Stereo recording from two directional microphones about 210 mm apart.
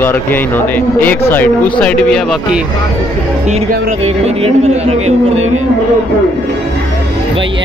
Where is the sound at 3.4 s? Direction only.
30° right (ahead or behind).